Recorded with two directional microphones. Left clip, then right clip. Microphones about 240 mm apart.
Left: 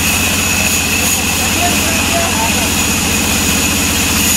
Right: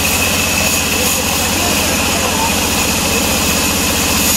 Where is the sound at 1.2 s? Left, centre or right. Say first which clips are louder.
Left 1 dB; right.